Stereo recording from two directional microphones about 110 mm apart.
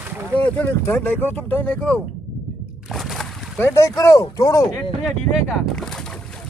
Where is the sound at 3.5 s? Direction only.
25° left (ahead or behind).